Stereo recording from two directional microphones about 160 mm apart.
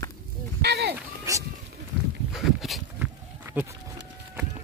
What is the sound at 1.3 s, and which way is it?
Speech, 20° right (ahead or behind).